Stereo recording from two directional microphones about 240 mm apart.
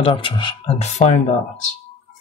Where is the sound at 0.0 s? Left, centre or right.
Left.